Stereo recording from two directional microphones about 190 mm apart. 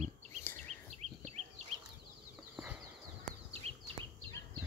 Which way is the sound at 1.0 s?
35° right (ahead or behind).